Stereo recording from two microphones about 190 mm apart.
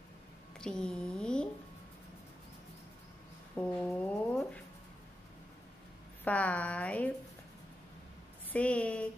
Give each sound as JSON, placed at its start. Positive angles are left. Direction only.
{"t": 0.6, "sound": "speech", "side_deg": 5}
{"t": 3.5, "sound": "speech", "side_deg": 5}
{"t": 6.2, "sound": "a woman's voice", "side_deg": 5}
{"t": 8.5, "sound": "a woman's voice", "side_deg": 5}